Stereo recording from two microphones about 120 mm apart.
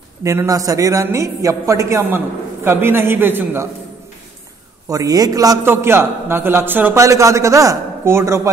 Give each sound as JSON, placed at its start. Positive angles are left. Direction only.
{"t": 0.2, "sound": "a woman's voice", "side_deg": -25}
{"t": 4.8, "sound": "a woman's voice", "side_deg": -30}
{"t": 5.7, "sound": "a woman's voice", "side_deg": -20}